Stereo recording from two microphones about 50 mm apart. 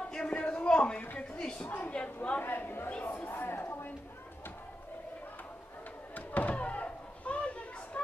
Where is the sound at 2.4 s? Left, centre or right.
Left.